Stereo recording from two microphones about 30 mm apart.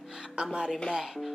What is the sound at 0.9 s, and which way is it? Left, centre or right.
Music, centre.